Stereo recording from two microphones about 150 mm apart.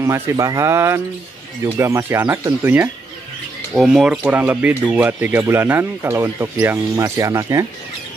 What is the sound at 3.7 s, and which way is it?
Speech, 5° right (ahead or behind).